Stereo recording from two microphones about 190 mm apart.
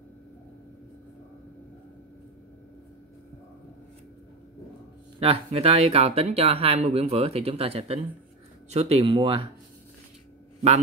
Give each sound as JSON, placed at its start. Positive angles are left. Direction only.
{"t": 5.2, "sound": "speech", "side_deg": -30}